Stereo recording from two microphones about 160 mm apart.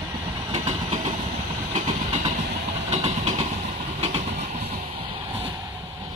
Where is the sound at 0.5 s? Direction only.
45° right (ahead or behind).